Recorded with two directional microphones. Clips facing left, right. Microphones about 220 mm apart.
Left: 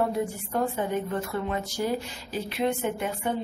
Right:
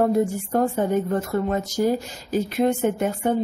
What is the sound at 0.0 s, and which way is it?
Speech, 45° right (ahead or behind).